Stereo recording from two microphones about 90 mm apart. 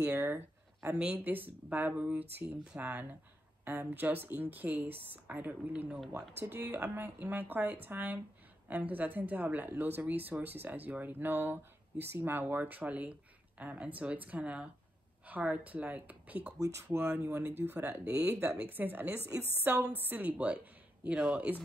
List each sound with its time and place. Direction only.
0.0 s speech: 20° right (ahead or behind)
16.5 s speech: 35° right (ahead or behind); by 21.5 s 15° right (ahead or behind)